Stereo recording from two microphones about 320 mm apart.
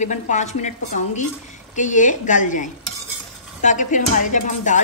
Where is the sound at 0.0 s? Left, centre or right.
Left.